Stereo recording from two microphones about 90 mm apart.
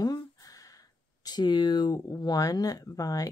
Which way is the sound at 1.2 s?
50° left (ahead or behind).